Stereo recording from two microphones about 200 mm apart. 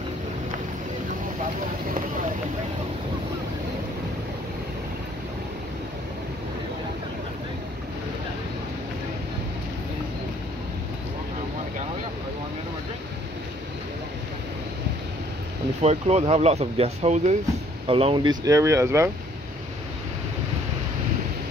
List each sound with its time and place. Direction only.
15.8 s speech: 30° right (ahead or behind); by 19.0 s 15° right (ahead or behind)